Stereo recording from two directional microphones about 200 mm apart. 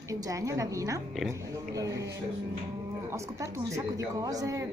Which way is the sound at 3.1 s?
15° right (ahead or behind).